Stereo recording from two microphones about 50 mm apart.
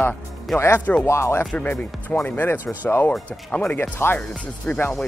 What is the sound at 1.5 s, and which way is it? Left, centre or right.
Speech, left.